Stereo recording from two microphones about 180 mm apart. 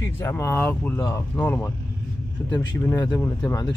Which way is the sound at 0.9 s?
20° left (ahead or behind).